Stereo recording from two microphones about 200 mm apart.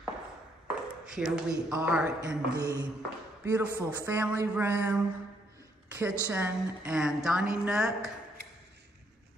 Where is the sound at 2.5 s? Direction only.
20° right (ahead or behind).